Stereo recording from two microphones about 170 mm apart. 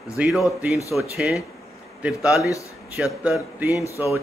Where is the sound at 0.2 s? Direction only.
5° right (ahead or behind).